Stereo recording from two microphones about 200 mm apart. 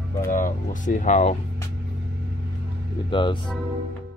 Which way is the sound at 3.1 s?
25° left (ahead or behind).